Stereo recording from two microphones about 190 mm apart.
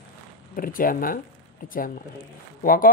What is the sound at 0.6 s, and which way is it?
Speech, 45° left (ahead or behind).